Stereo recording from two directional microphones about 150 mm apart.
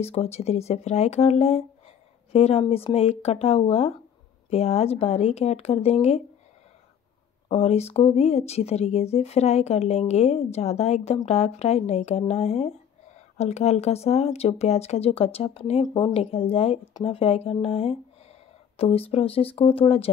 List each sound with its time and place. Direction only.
0.0 s speech: 45° left (ahead or behind)
7.4 s speech: 45° left (ahead or behind)